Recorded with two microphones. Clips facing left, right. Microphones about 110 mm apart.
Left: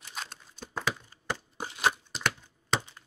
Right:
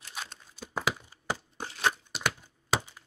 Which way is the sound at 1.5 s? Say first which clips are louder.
Left 2 dB; 10° left (ahead or behind).